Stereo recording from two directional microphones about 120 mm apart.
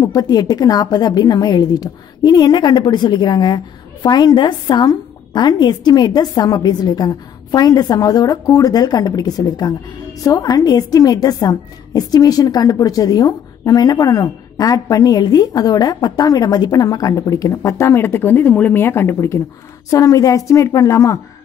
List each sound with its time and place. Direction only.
0.0 s a woman's voice: 35° left (ahead or behind)